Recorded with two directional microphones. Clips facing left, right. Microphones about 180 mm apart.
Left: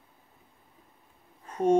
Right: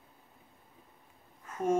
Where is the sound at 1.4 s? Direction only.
35° left (ahead or behind).